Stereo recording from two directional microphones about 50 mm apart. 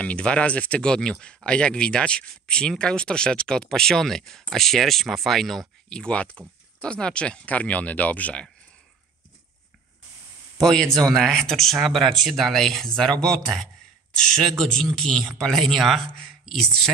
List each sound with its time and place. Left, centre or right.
0.0 s speech: left; by 5.7 s centre
5.9 s speech: centre
10.6 s speech: centre